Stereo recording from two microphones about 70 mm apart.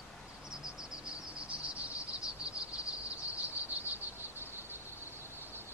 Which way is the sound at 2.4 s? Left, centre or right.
Centre.